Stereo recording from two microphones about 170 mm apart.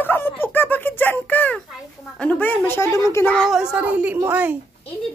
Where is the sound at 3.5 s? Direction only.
5° right (ahead or behind).